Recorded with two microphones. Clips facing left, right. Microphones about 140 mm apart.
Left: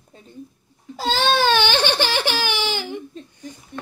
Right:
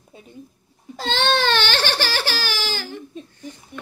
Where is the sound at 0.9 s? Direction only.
5° left (ahead or behind).